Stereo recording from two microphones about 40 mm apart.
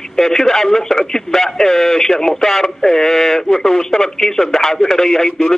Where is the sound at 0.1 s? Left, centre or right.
Centre.